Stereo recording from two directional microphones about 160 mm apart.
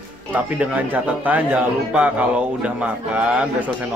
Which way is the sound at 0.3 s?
10° right (ahead or behind).